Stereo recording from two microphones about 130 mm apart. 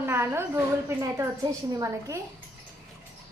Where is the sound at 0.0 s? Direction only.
20° right (ahead or behind).